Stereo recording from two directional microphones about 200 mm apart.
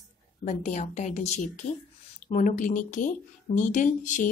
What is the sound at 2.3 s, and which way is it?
Speech, 40° left (ahead or behind).